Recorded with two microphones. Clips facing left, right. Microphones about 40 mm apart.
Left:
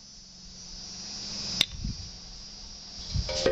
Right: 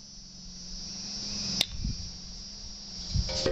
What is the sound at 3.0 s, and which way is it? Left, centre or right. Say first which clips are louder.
Cricket: left 2 dB; left.